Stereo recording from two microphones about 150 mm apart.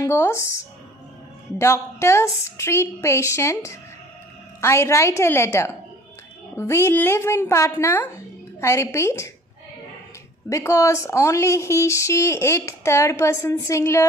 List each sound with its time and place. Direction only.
0.0 s a woman's voice: 20° left (ahead or behind)
1.6 s a woman's voice: 20° left (ahead or behind)
10.5 s a woman's voice: 20° left (ahead or behind)